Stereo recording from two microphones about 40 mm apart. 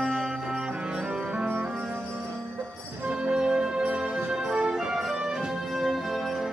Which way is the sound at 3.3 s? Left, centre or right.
Centre.